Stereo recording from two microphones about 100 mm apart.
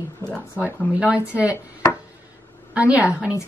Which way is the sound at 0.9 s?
15° right (ahead or behind).